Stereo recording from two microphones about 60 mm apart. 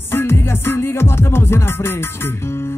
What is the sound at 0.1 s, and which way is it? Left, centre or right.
Music, left.